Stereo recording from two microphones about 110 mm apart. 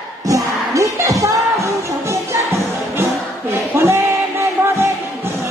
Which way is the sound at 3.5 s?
25° right (ahead or behind).